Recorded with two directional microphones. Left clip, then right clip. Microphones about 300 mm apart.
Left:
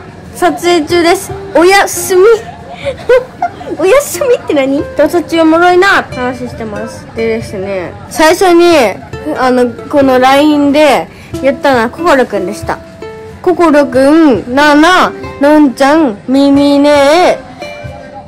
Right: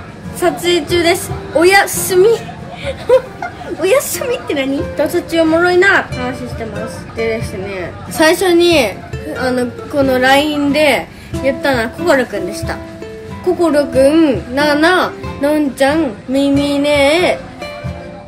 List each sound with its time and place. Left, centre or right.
0.4 s speech: left
4.1 s speech: centre